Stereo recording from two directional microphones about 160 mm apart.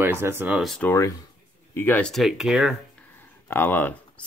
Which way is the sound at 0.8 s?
15° left (ahead or behind).